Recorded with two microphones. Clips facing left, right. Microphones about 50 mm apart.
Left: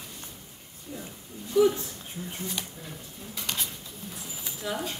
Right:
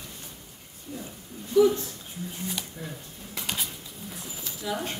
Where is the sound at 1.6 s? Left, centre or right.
Centre.